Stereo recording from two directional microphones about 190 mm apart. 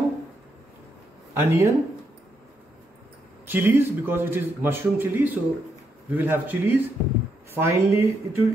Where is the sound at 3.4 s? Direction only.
10° right (ahead or behind).